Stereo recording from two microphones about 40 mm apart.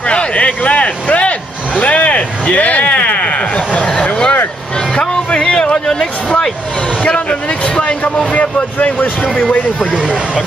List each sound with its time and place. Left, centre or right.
0.0 s a sound: left
7.2 s speech: left
8.9 s speech: left